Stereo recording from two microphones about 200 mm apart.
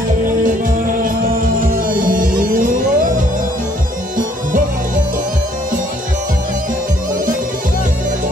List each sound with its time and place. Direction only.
1.0 s music: 40° right (ahead or behind)